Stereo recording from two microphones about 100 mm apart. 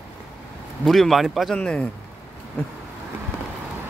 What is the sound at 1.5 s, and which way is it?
Speech, 10° left (ahead or behind).